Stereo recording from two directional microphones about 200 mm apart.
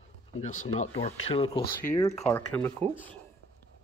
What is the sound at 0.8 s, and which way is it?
Speech, 35° left (ahead or behind).